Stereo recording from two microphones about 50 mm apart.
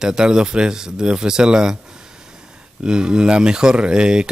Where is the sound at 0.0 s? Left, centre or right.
Centre.